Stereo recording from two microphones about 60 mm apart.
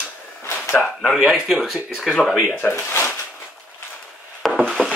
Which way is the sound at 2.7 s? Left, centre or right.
Left.